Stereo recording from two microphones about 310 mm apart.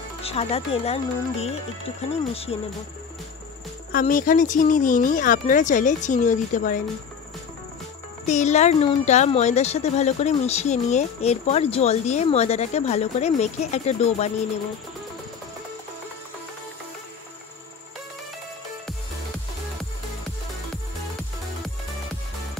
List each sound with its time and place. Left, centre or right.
0.2 s speech: centre
3.9 s speech: left
8.3 s speech: left